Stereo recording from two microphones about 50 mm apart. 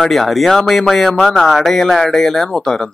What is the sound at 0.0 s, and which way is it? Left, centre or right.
Speech, centre.